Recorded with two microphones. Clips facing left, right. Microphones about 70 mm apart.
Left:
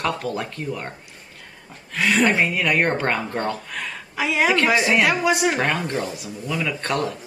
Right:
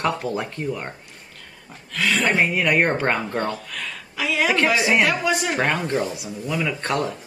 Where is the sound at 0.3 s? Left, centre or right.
Centre.